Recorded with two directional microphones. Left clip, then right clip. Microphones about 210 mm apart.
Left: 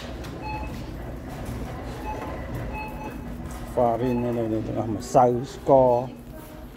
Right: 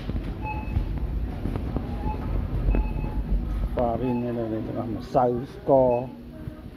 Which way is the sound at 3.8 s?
5° left (ahead or behind).